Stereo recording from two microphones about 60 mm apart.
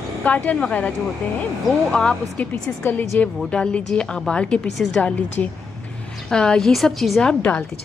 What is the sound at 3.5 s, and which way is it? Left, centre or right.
A woman's voice, centre.